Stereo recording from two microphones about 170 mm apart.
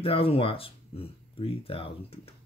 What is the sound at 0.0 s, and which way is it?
Speech, 35° left (ahead or behind).